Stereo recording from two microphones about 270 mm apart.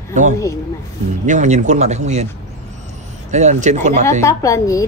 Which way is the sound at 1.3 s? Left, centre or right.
Right.